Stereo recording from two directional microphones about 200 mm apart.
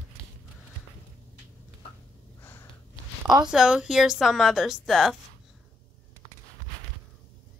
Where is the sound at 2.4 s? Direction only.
10° left (ahead or behind).